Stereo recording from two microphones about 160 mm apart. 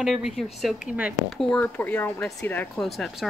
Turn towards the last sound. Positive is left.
turn(degrees=0)  # may be behind; listen again after turning